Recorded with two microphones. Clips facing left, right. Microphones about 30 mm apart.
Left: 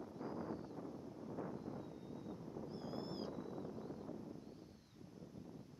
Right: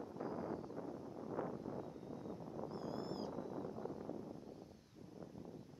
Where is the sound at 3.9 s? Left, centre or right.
Centre.